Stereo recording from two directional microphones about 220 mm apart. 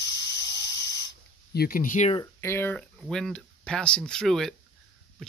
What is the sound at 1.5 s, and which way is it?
Speech, 40° left (ahead or behind).